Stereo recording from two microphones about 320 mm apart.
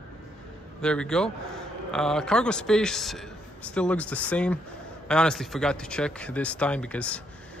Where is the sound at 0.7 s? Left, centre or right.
Centre.